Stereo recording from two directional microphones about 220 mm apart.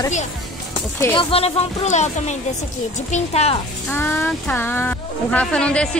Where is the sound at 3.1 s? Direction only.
30° left (ahead or behind).